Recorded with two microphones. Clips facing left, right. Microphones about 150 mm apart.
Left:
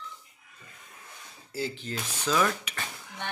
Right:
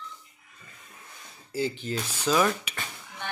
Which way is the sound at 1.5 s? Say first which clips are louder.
Right 4 dB; centre (ahead or behind).